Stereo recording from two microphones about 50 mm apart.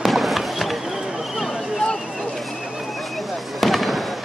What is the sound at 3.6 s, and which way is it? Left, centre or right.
Fireworks, centre.